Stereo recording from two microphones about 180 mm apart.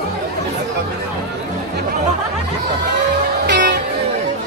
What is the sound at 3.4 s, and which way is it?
Music, 70° right (ahead or behind).